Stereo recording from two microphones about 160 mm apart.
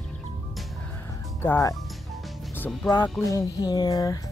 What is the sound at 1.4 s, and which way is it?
Speech, 15° left (ahead or behind).